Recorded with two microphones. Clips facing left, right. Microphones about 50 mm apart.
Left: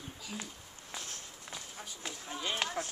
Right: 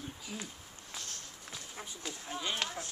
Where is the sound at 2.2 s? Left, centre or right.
Centre.